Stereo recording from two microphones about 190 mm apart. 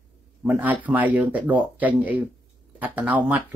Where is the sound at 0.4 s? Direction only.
10° right (ahead or behind).